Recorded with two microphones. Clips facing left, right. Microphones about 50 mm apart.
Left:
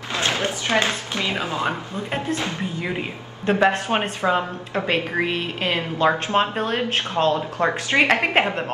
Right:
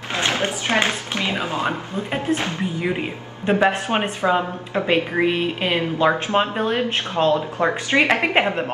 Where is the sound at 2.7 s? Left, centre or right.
Centre.